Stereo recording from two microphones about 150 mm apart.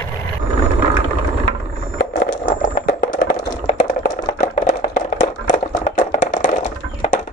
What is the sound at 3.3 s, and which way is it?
Chopping, 60° left (ahead or behind).